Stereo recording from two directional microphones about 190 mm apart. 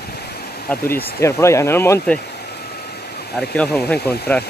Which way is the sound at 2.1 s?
55° left (ahead or behind).